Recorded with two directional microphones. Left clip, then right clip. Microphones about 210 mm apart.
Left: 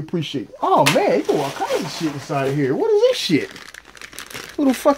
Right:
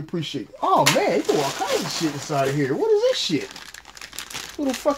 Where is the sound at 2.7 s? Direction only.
45° left (ahead or behind).